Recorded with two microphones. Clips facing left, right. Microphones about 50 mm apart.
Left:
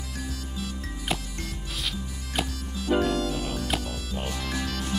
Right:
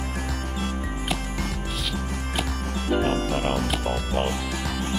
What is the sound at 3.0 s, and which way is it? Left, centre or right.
Music, right.